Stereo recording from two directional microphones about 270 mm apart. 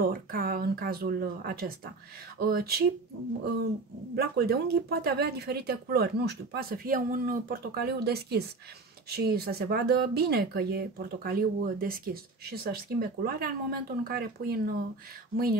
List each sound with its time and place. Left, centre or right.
0.0 s speech: right
4.1 s speech: right